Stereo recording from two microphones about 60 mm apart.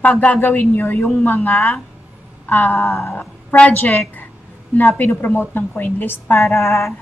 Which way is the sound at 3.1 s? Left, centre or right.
Left.